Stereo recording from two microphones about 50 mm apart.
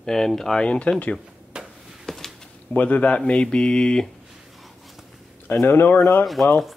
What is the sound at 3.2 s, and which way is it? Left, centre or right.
Mantra, centre.